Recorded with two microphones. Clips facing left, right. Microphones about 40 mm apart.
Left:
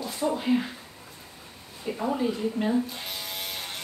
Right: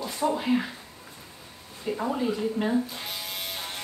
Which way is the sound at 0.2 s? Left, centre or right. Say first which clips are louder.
Right 1 dB; centre.